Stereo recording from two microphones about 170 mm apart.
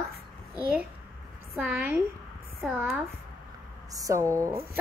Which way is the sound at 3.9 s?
20° right (ahead or behind).